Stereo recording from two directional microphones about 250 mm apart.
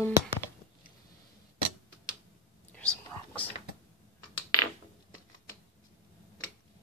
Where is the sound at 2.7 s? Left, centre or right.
Centre.